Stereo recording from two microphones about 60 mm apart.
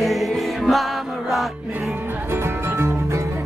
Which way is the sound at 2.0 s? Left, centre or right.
Right.